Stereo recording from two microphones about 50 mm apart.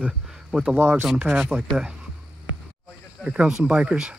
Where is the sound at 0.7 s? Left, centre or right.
Right.